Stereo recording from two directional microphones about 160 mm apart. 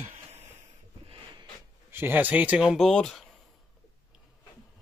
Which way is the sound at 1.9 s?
10° right (ahead or behind).